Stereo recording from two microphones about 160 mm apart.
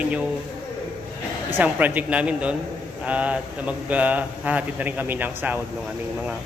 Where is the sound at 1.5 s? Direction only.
10° right (ahead or behind).